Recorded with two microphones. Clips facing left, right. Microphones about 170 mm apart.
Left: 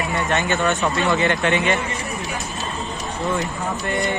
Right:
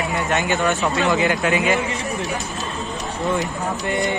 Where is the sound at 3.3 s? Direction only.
15° right (ahead or behind).